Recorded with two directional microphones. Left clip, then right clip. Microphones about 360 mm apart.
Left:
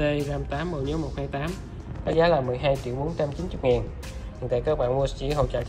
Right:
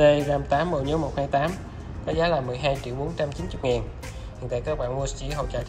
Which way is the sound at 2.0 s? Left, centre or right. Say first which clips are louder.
Left 3 dB; centre.